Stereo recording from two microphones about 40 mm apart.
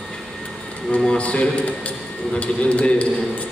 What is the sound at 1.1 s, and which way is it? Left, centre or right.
A man's voice, left.